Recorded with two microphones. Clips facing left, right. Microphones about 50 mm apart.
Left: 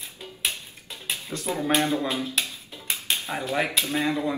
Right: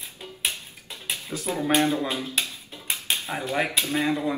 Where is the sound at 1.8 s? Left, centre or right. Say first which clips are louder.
Right 3 dB; right.